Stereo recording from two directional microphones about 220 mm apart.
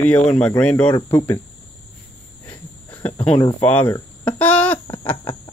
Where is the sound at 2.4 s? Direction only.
15° left (ahead or behind).